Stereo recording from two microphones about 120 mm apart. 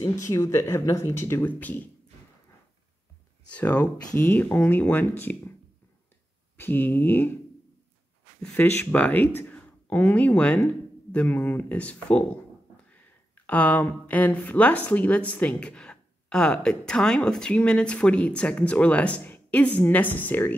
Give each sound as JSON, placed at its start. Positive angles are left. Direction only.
{"t": 0.0, "sound": "speech", "side_deg": 25}
{"t": 3.4, "sound": "speech", "side_deg": 10}
{"t": 6.5, "sound": "speech", "side_deg": 15}
{"t": 8.4, "sound": "speech", "side_deg": 10}
{"t": 13.5, "sound": "speech", "side_deg": 15}